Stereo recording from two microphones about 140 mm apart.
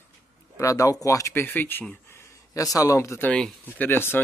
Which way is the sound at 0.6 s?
25° left (ahead or behind).